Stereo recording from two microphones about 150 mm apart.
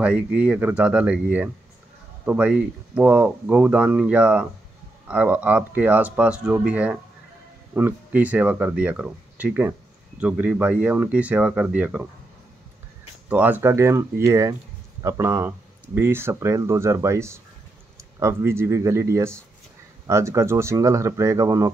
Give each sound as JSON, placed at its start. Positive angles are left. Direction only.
{"t": 0.0, "sound": "speech", "side_deg": -5}
{"t": 13.3, "sound": "speech", "side_deg": -10}